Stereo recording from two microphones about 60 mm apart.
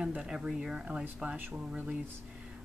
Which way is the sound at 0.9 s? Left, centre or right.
Right.